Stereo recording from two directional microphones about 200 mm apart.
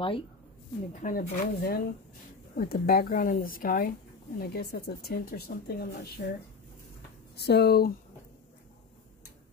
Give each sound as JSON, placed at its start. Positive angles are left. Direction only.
{"t": 0.9, "sound": "speech", "side_deg": 40}
{"t": 7.3, "sound": "speech", "side_deg": 55}